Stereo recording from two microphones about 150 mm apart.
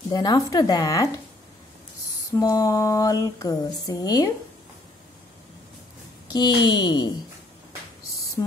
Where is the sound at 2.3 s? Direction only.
25° left (ahead or behind).